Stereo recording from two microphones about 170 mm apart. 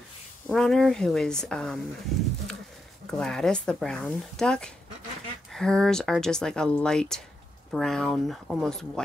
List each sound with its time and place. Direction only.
0.5 s speech: centre (ahead or behind)
3.1 s speech: 5° left (ahead or behind)